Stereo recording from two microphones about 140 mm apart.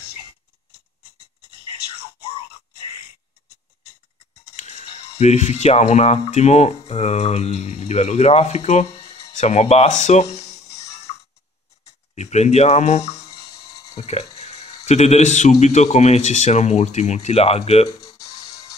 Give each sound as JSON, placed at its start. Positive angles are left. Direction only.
{"t": 4.6, "sound": "speech", "side_deg": 50}
{"t": 12.2, "sound": "speech", "side_deg": 55}
{"t": 13.0, "sound": "music", "side_deg": 25}
{"t": 13.9, "sound": "speech", "side_deg": 50}